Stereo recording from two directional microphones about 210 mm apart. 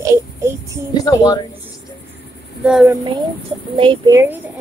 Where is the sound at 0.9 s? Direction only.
15° left (ahead or behind).